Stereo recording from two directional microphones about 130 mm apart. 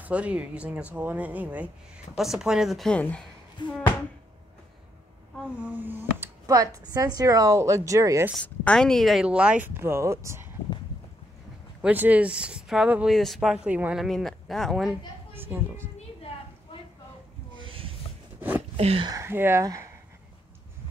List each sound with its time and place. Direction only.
0.0 s speech: 10° right (ahead or behind); by 3.3 s 10° left (ahead or behind)
3.6 s a sound: 35° left (ahead or behind)
5.7 s speech: 15° right (ahead or behind)
8.4 s speech: 5° left (ahead or behind); by 10.5 s 20° right (ahead or behind)
11.8 s speech: 10° right (ahead or behind)
14.0 s speech: centre (ahead or behind)
15.3 s speech: 15° right (ahead or behind)
17.6 s a sound: 45° right (ahead or behind)
18.8 s speech: 50° right (ahead or behind)
19.0 s speech: 20° right (ahead or behind)